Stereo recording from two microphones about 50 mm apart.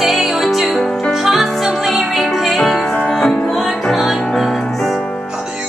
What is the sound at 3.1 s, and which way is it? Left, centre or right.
Music, centre.